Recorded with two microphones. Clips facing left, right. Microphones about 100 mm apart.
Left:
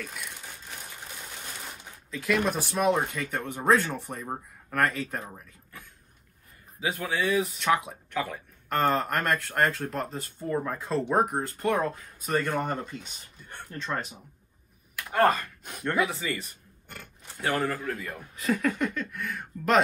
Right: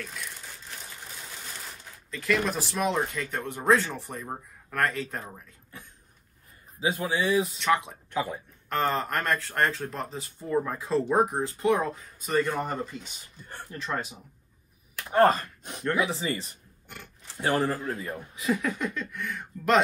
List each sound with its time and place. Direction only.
0.0 s crumpling: 5° left (ahead or behind)
2.8 s speech: 5° left (ahead or behind)
6.8 s a man's voice: 20° right (ahead or behind)
7.6 s speech: 5° left (ahead or behind)
8.1 s speech: 20° right (ahead or behind)
8.6 s speech: centre (ahead or behind)
15.0 s a man's voice: 25° right (ahead or behind)
17.7 s a man's voice: 30° right (ahead or behind)
18.3 s speech: centre (ahead or behind)